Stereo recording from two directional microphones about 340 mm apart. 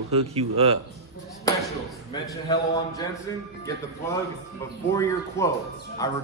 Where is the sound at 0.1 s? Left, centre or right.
Centre.